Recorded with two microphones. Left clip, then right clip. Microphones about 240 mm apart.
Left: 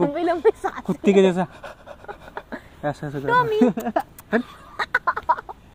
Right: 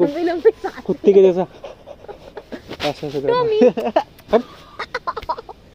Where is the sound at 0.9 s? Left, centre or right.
Left.